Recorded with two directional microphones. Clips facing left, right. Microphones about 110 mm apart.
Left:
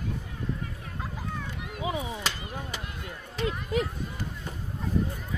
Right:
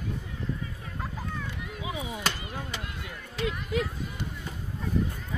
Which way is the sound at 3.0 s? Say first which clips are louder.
Left 1 dB; 30° left (ahead or behind).